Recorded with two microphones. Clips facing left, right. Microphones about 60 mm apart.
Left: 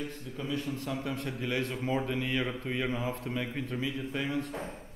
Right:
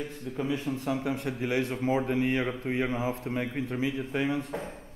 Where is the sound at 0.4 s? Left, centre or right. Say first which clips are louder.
Right 4 dB; right.